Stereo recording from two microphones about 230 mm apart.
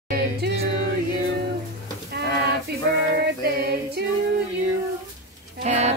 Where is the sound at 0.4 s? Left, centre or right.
Right.